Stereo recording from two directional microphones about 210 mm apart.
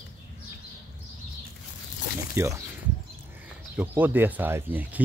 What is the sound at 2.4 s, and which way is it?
Speech, 10° right (ahead or behind).